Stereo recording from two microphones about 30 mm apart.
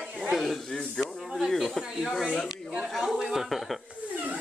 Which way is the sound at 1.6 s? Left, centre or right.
Centre.